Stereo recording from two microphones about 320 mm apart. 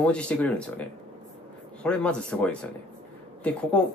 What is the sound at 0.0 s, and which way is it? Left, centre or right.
Speech, centre.